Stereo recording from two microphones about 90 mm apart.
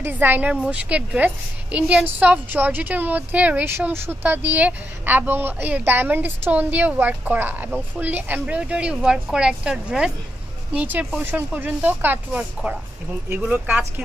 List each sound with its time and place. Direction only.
0.0 s a woman's voice: 20° right (ahead or behind)